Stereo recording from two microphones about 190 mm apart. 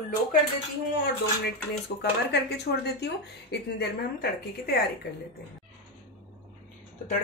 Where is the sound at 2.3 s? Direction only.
60° left (ahead or behind).